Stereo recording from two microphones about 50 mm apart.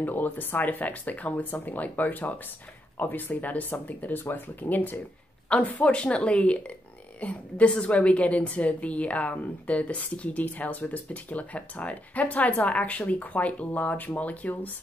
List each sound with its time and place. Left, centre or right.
0.0 s speech: left
5.5 s speech: left